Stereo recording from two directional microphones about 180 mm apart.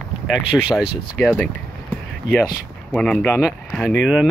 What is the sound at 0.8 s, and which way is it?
Speech, 65° left (ahead or behind).